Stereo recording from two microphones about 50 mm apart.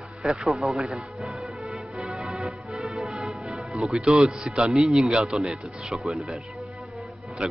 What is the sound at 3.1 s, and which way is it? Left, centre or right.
Music, centre.